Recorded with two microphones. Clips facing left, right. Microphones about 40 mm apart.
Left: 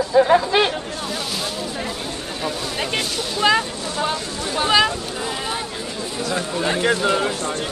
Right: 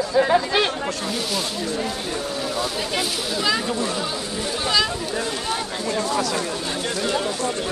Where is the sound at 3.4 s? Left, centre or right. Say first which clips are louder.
Left 5 dB; left.